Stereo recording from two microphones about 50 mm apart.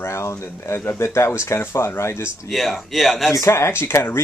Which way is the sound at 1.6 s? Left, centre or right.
Left.